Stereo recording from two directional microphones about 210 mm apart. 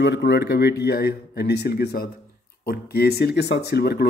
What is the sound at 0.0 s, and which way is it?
Speech, 55° left (ahead or behind).